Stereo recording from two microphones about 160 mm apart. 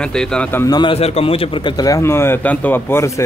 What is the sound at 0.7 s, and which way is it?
A man's voice, 30° left (ahead or behind).